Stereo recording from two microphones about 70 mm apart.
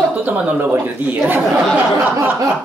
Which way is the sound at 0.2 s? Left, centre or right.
Right.